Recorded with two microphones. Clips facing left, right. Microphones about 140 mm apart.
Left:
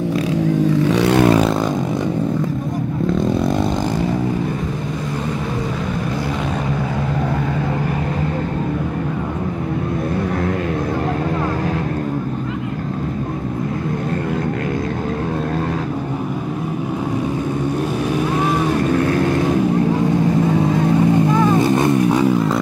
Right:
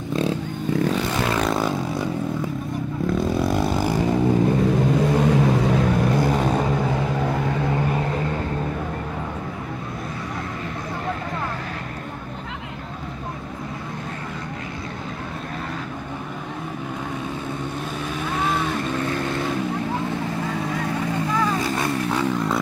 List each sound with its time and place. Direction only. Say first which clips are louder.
0.8 s vehicle: left 8 dB; 80° left
1.4 s vehicle: left 5 dB; centre (ahead or behind)
3.3 s vehicle: left 3 dB; 5° right (ahead or behind)
20.4 s vehicle: left 10 dB; 20° left (ahead or behind)